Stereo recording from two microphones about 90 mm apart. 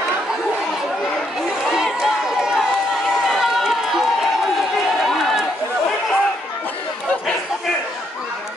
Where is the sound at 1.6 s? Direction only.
Centre (ahead or behind).